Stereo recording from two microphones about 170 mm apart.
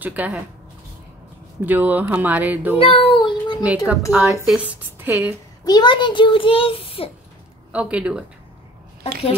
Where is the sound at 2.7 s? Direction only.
35° left (ahead or behind).